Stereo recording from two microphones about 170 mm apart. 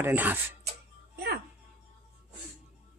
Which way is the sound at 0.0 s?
10° right (ahead or behind).